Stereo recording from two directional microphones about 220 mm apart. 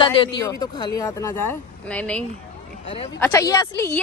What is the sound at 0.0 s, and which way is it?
A woman's voice, 20° left (ahead or behind).